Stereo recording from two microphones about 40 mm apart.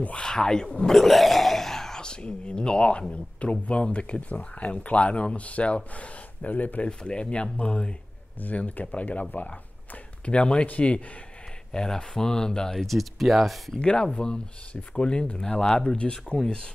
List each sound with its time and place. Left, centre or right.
0.2 s speech: centre
0.9 s speech: centre; by 6.8 s left
6.8 s speech: left
8.5 s speech: left
11.7 s speech: centre
12.7 s speech: centre
13.7 s speech: left